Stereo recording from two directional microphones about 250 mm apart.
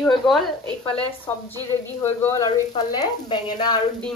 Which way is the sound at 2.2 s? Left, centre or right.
Centre.